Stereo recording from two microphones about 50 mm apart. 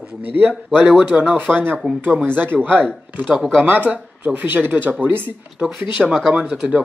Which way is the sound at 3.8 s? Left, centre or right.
Right.